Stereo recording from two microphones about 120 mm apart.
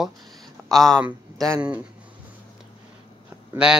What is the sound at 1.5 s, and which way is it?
Speech, 10° right (ahead or behind).